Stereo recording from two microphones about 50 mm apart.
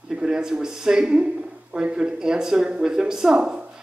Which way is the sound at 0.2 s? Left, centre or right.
Centre.